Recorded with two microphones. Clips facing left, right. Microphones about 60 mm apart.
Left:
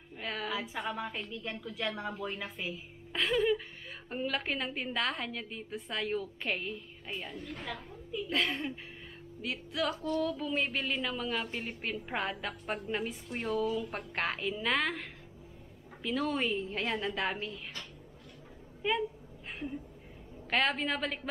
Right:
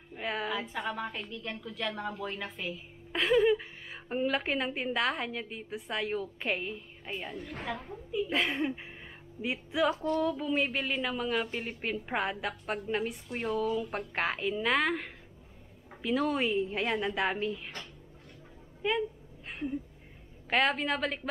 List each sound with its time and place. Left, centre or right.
0.1 s a sound: centre
0.5 s a woman's voice: centre
3.1 s a sound: centre
4.1 s a woman's voice: centre
8.1 s a woman's voice: centre
18.8 s speech: centre
20.4 s a woman's voice: centre